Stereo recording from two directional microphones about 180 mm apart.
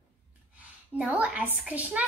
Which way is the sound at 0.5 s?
10° right (ahead or behind).